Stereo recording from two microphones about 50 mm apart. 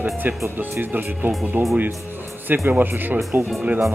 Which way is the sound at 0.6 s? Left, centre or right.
Right.